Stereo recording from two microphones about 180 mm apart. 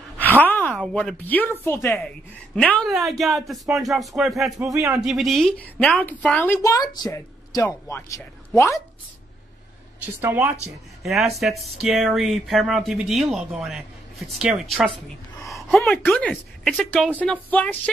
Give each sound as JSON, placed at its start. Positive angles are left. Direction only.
{"t": 0.4, "sound": "a woman's voice", "side_deg": 10}
{"t": 4.7, "sound": "speech", "side_deg": -15}
{"t": 5.0, "sound": "a woman's voice", "side_deg": 0}
{"t": 10.2, "sound": "speech", "side_deg": -10}
{"t": 11.0, "sound": "a woman's voice", "side_deg": 0}